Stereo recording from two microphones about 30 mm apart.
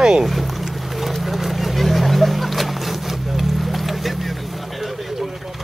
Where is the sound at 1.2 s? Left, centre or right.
Centre.